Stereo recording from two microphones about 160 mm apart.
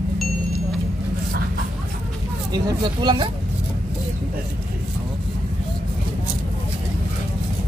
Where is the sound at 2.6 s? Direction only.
25° right (ahead or behind).